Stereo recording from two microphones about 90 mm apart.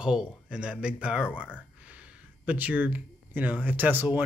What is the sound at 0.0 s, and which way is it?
Speech, 10° right (ahead or behind).